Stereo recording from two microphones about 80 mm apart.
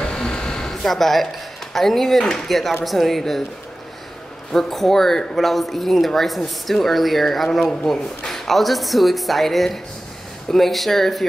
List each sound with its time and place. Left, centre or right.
0.0 s a sound: centre
2.8 s speech: centre
4.5 s speech: centre